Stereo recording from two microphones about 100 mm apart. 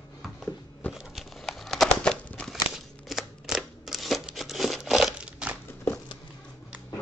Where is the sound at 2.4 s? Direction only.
5° right (ahead or behind).